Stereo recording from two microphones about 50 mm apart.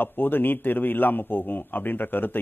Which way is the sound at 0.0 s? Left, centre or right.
Left.